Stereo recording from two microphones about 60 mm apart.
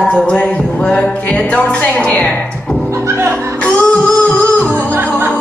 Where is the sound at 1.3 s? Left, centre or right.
Left.